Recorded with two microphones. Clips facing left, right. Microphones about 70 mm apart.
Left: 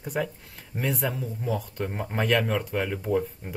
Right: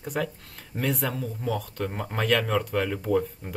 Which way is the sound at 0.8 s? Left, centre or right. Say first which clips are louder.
Right 1 dB; left.